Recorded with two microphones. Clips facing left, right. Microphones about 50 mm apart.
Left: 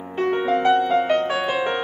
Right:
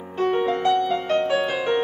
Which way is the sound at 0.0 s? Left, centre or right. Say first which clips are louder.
Even; left.